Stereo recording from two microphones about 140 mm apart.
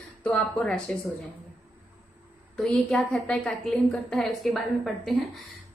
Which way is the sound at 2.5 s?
5° left (ahead or behind).